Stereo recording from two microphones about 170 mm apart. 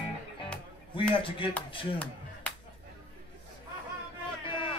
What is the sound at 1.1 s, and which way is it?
Speech, 30° left (ahead or behind).